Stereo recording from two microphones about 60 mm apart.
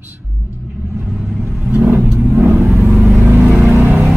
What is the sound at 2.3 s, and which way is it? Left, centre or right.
Vehicle, right.